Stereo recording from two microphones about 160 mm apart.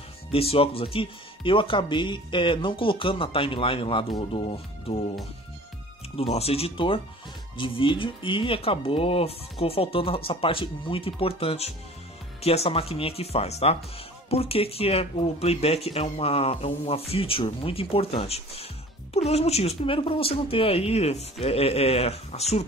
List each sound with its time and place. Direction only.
0.3 s speech: 35° left (ahead or behind)
6.1 s speech: 40° left (ahead or behind)